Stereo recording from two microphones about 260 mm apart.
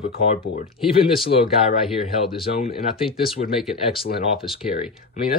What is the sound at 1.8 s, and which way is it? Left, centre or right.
Speech, centre.